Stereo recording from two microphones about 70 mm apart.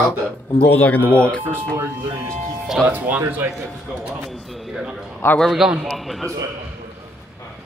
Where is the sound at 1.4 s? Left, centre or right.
Right.